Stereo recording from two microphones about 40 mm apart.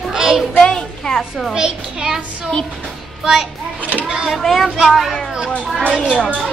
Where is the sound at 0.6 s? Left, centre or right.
Centre.